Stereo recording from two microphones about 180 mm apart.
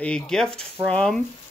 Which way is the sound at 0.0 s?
5° left (ahead or behind).